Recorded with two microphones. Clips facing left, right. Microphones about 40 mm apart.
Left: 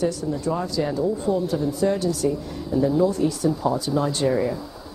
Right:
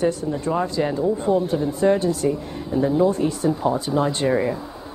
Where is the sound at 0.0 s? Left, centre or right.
Right.